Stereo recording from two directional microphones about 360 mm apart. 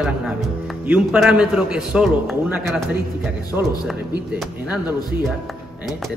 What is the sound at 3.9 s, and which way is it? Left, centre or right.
Speech, centre.